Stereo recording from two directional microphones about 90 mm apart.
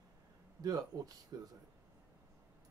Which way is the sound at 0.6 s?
45° right (ahead or behind).